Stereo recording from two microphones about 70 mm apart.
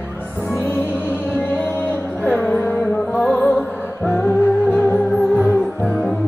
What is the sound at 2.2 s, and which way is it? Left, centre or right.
Music, left.